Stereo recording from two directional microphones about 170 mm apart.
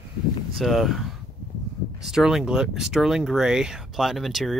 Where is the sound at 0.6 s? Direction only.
Centre (ahead or behind).